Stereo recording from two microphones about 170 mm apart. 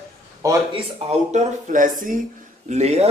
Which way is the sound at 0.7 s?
40° right (ahead or behind).